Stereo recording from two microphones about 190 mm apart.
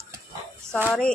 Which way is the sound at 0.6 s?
10° right (ahead or behind).